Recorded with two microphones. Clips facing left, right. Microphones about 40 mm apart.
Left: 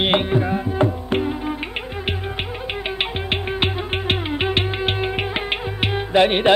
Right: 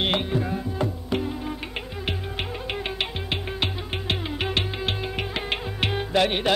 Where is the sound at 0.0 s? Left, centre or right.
Left.